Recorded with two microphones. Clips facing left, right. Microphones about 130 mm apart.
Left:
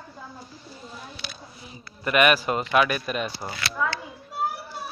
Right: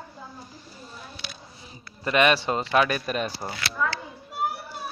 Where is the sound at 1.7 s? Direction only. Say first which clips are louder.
Left 1 dB; 30° right (ahead or behind).